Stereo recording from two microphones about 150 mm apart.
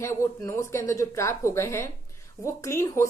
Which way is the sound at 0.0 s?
20° left (ahead or behind).